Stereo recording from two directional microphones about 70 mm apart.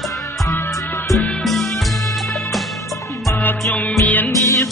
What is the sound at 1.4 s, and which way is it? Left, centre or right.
Music, centre.